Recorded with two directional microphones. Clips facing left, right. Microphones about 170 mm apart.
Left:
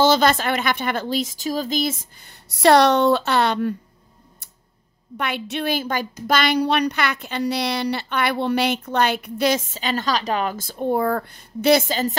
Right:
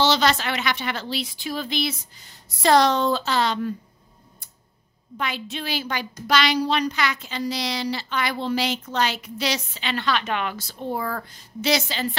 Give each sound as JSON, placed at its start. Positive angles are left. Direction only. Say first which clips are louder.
{"t": 0.0, "sound": "a woman's voice", "louder": "left 4 dB", "side_deg": 50}
{"t": 5.1, "sound": "speech", "louder": "left 4 dB", "side_deg": 65}